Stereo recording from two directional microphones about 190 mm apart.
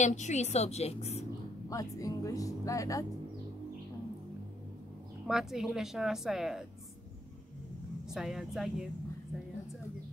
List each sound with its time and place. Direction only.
0.0 s a woman's voice: 40° left (ahead or behind)
1.7 s speech: 15° left (ahead or behind)
5.2 s speech: centre (ahead or behind)
8.1 s speech: centre (ahead or behind)